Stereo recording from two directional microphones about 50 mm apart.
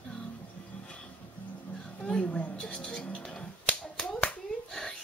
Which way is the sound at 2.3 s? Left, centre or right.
Left.